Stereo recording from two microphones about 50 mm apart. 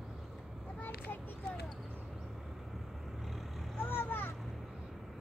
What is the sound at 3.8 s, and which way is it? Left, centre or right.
Vehicle, left.